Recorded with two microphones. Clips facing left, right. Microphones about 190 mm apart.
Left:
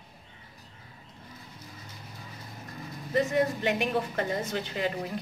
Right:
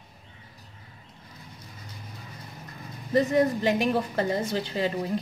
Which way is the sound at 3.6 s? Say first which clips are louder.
Right 3 dB; 35° right (ahead or behind).